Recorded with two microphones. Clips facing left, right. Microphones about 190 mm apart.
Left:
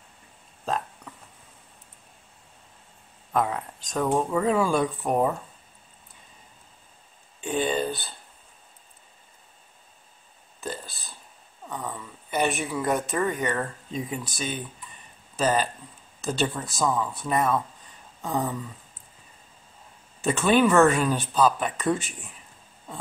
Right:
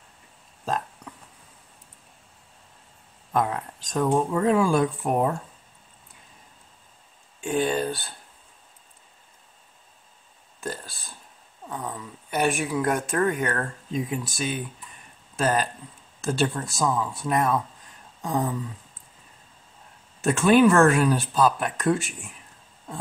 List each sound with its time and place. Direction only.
0.7 s hiccup: centre (ahead or behind)
3.3 s speech: centre (ahead or behind)
7.3 s speech: 5° right (ahead or behind)
11.6 s a sound: 5° right (ahead or behind)
12.5 s speech: 10° right (ahead or behind)
12.8 s speech: 5° left (ahead or behind)
20.2 s speech: centre (ahead or behind)